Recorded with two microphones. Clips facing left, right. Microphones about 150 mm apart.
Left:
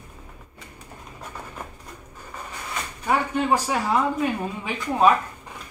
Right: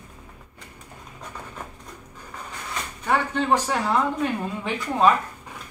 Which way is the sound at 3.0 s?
10° left (ahead or behind).